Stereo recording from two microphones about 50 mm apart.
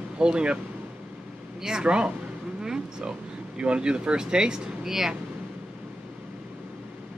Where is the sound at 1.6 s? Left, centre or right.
Centre.